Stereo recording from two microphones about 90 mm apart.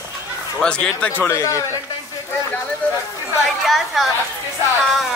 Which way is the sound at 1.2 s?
30° left (ahead or behind).